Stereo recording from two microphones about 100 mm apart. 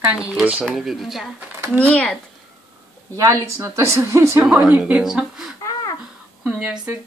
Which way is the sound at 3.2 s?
30° right (ahead or behind).